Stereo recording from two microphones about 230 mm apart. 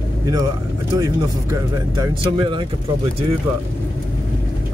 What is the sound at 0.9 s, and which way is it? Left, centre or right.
Speech, centre.